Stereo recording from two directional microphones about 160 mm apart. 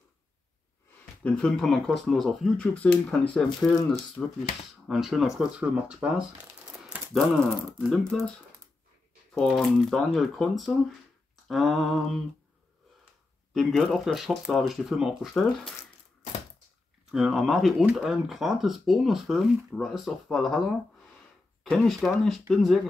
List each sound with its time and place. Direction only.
1.2 s speech: 5° left (ahead or behind)
3.4 s speech: 20° left (ahead or behind)
4.8 s speech: centre (ahead or behind)
6.9 s a sound: 5° right (ahead or behind)
7.8 s speech: 5° left (ahead or behind)
9.3 s speech: centre (ahead or behind)
13.5 s speech: centre (ahead or behind)
17.1 s speech: centre (ahead or behind)
21.6 s speech: 5° left (ahead or behind)